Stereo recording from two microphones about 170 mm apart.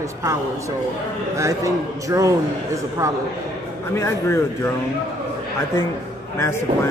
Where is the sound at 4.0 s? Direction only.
15° left (ahead or behind).